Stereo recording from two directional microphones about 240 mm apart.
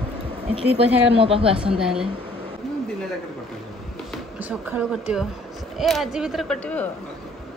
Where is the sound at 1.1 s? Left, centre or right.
Right.